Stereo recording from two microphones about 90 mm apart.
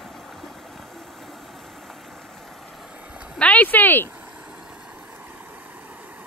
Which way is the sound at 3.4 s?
15° left (ahead or behind).